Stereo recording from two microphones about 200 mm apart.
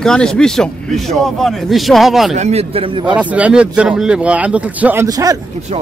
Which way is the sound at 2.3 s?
35° right (ahead or behind).